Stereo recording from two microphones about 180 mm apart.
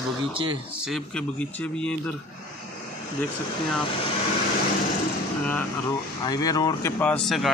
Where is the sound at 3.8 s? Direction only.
30° left (ahead or behind).